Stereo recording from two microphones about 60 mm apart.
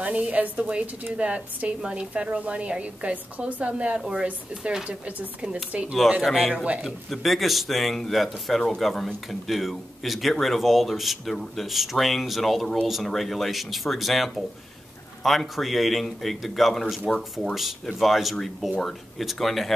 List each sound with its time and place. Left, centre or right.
0.0 s a woman's voice: right
6.2 s speech: centre